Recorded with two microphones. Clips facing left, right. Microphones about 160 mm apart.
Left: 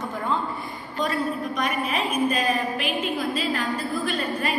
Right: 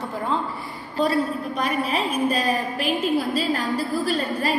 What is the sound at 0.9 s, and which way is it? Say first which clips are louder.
A woman's voice: right 4 dB; 35° right (ahead or behind).